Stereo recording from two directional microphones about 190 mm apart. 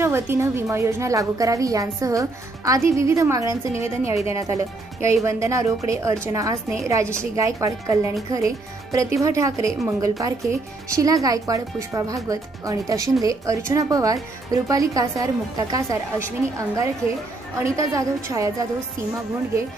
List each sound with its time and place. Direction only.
0.0 s a woman's voice: 10° right (ahead or behind)